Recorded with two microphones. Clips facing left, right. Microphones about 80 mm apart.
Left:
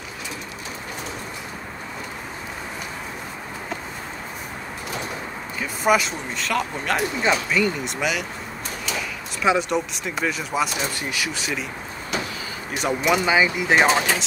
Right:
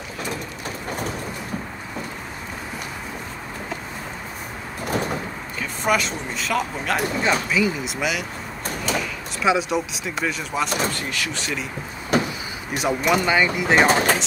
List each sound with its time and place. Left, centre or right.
5.6 s speech: centre
9.4 s speech: centre
12.1 s vehicle: right
12.7 s speech: centre
13.8 s speech: right